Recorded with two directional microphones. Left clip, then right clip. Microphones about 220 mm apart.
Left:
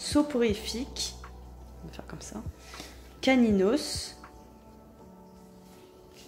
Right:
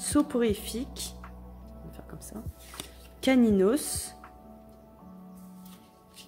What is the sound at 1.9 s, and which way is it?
Music, 15° right (ahead or behind).